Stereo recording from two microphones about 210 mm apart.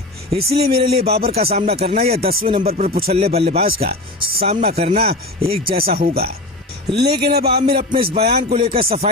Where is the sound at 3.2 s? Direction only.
30° right (ahead or behind).